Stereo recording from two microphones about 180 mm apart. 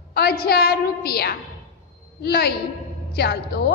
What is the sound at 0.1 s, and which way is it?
A woman's voice, 60° left (ahead or behind).